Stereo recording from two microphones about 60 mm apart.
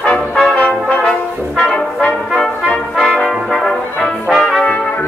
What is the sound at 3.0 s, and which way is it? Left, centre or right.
Brass instrument, centre.